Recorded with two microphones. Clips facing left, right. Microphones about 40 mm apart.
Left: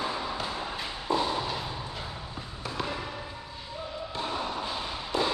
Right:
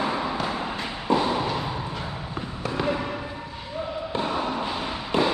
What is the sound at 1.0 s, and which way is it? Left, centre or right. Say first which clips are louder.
Thump: right 5 dB; right.